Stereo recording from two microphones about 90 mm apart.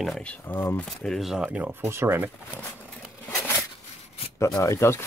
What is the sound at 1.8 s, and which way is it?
Speech, 30° right (ahead or behind).